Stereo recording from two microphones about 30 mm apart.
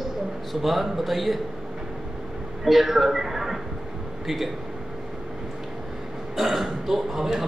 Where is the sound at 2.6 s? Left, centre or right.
Centre.